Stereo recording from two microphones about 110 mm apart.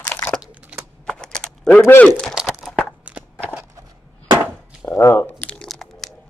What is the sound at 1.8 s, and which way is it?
Speech, 15° left (ahead or behind).